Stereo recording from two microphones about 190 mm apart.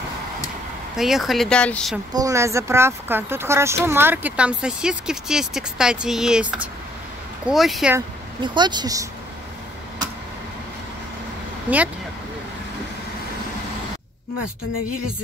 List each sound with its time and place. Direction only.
0.9 s speech: centre (ahead or behind)
2.1 s speech: 15° right (ahead or behind); by 7.9 s centre (ahead or behind)
8.4 s speech: 25° right (ahead or behind)